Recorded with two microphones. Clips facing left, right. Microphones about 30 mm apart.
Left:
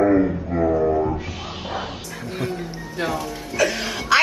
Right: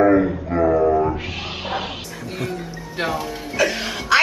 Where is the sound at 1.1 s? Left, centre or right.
Right.